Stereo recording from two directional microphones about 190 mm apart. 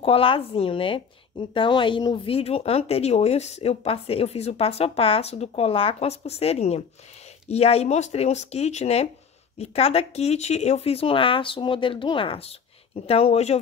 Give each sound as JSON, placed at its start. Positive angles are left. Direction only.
{"t": 0.0, "sound": "speech", "side_deg": 30}